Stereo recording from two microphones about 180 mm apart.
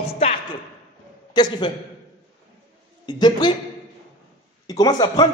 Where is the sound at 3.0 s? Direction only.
25° left (ahead or behind).